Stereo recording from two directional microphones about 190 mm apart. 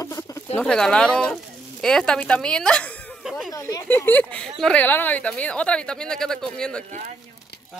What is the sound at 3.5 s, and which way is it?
Speech, 15° left (ahead or behind).